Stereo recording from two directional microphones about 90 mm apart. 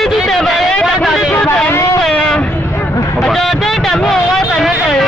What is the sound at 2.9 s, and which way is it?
Vehicle, 35° left (ahead or behind).